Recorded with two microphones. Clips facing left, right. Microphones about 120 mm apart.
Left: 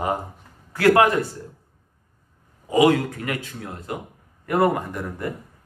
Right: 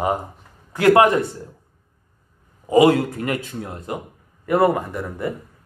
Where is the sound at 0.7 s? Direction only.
20° right (ahead or behind).